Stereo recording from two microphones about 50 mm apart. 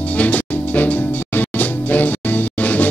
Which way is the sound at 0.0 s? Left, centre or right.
Left.